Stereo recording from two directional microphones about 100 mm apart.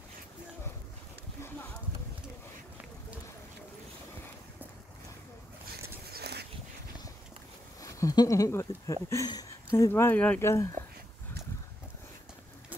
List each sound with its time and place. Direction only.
7.8 s speech: 35° left (ahead or behind)
9.7 s speech: 25° left (ahead or behind)
10.4 s speech: 30° left (ahead or behind)